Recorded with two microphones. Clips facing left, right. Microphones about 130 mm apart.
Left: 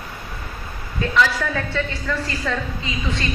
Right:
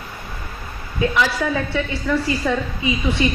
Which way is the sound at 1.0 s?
15° right (ahead or behind).